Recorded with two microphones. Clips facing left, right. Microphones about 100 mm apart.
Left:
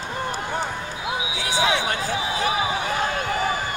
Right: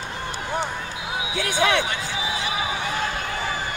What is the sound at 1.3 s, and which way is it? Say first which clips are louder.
Basketball bounce: right 2 dB; 55° right (ahead or behind).